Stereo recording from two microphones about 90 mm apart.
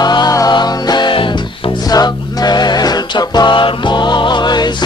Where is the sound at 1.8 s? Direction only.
45° left (ahead or behind).